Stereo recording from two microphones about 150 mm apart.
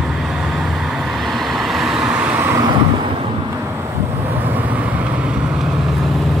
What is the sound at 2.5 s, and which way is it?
Vehicle, 25° right (ahead or behind).